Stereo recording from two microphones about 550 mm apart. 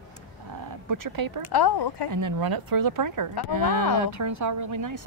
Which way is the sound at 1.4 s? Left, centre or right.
Left.